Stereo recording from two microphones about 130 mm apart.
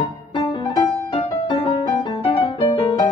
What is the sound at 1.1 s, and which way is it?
Music, 45° left (ahead or behind).